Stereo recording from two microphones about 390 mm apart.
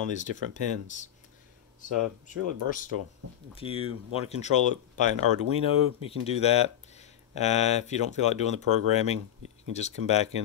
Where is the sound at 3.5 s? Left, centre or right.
Centre.